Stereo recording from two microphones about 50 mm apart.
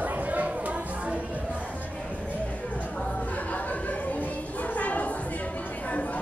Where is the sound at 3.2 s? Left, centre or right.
Left.